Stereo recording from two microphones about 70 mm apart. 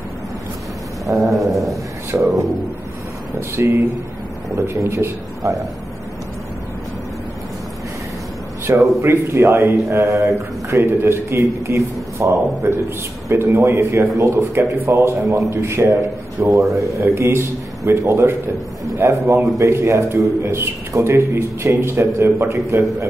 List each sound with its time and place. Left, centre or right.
1.2 s a sound: centre
2.1 s a man's voice: right
3.3 s a man's voice: right
8.7 s a man's voice: right